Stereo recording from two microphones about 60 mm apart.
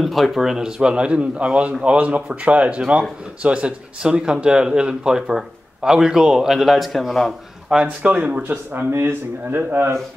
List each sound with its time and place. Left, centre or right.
0.0 s a man's voice: centre
7.8 s speech: right
8.9 s speech: right